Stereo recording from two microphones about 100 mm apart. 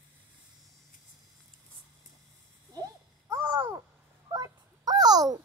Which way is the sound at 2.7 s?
40° right (ahead or behind).